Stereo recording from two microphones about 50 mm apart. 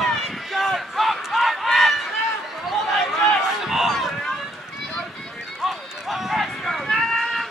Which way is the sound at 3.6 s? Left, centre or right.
Centre.